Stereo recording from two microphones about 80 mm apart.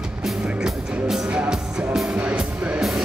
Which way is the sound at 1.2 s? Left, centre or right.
Centre.